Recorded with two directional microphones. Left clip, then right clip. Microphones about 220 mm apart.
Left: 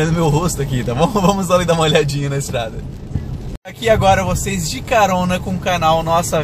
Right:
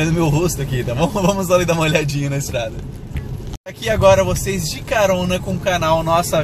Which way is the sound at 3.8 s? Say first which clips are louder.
Even; 20° left (ahead or behind).